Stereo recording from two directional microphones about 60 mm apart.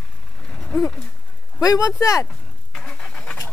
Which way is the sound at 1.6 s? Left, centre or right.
Left.